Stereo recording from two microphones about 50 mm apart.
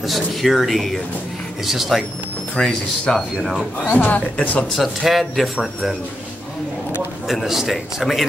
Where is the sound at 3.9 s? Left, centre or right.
Left.